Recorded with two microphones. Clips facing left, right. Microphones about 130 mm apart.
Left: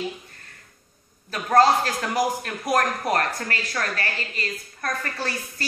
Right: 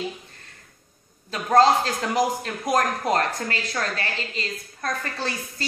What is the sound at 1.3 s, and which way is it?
A woman's voice, 20° right (ahead or behind).